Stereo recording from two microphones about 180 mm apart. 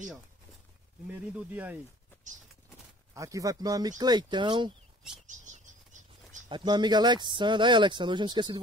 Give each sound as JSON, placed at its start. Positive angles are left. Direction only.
{"t": 1.1, "sound": "speech", "side_deg": -10}
{"t": 3.2, "sound": "speech", "side_deg": -20}
{"t": 5.2, "sound": "bird flight", "side_deg": -45}
{"t": 6.5, "sound": "speech", "side_deg": -25}